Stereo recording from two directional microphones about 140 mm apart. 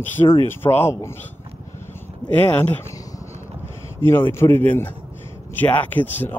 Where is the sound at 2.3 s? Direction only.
15° left (ahead or behind).